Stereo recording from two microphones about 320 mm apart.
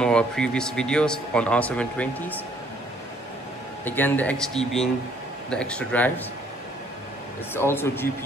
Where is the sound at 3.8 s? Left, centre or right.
Centre.